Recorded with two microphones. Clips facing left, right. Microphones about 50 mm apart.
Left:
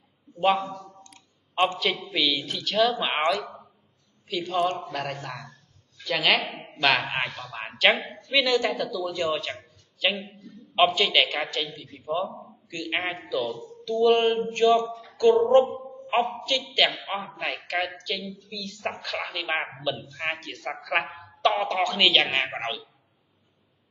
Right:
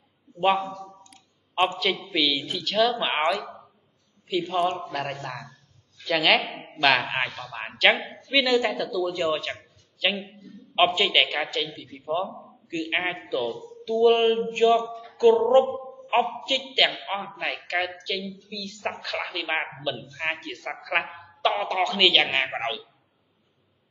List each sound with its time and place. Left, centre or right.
0.4 s a man's voice: centre
1.1 s clicking: centre
1.8 s a woman's voice: centre
11.0 s a man's voice: centre
11.2 s a woman's voice: centre
12.6 s a man's voice: right
16.1 s a man's voice: centre
16.7 s a woman's voice: centre